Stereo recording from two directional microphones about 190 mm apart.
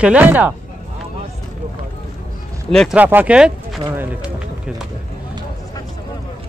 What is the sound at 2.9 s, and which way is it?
Speech, 10° right (ahead or behind).